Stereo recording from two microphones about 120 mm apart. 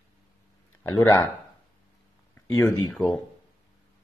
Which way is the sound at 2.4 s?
25° left (ahead or behind).